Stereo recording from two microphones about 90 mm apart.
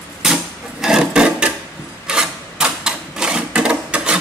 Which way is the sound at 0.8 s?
5° right (ahead or behind).